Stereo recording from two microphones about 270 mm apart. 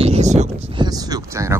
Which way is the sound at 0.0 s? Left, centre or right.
Right.